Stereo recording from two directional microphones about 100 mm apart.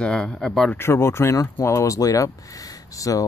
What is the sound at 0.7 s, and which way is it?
Speech, 25° left (ahead or behind).